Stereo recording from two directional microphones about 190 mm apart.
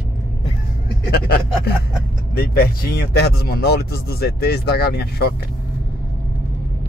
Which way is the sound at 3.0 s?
55° left (ahead or behind).